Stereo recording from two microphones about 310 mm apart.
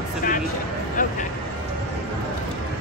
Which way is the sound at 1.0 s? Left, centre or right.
Left.